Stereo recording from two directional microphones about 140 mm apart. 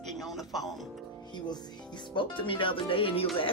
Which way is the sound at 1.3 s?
30° left (ahead or behind).